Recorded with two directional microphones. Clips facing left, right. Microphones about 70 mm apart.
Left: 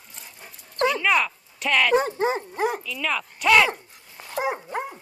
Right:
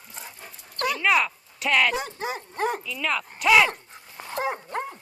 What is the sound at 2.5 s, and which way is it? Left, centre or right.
Speech, centre.